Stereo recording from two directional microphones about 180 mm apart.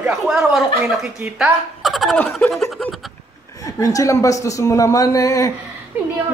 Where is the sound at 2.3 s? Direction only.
Centre (ahead or behind).